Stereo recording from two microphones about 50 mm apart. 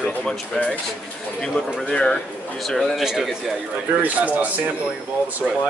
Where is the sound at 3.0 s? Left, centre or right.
Centre.